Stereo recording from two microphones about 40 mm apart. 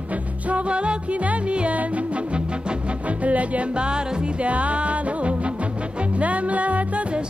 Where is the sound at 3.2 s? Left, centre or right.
Right.